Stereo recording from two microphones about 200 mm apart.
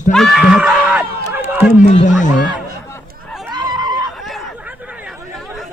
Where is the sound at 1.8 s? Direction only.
35° left (ahead or behind).